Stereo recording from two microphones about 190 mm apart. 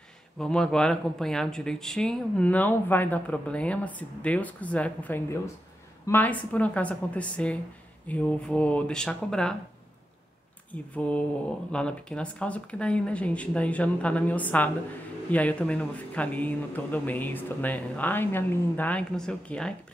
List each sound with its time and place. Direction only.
0.4 s speech: 5° left (ahead or behind)
10.7 s speech: 5° left (ahead or behind)